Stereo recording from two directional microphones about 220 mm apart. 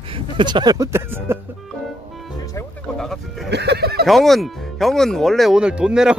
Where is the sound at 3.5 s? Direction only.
50° right (ahead or behind).